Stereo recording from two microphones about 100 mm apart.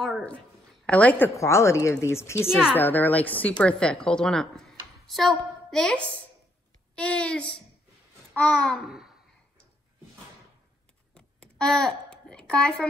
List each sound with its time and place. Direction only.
0.8 s a woman's voice: 15° left (ahead or behind)
1.3 s a woman's voice: 30° left (ahead or behind); by 8.8 s 10° left (ahead or behind)
8.8 s babbling: 5° right (ahead or behind)
11.1 s a sound: 10° left (ahead or behind)